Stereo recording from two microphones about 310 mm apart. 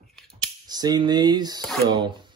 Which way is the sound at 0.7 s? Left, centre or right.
Centre.